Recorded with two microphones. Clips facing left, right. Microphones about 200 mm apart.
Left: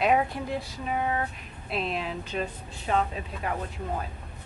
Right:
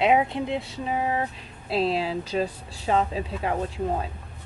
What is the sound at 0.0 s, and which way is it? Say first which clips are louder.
Speech: right 3 dB; 20° right (ahead or behind).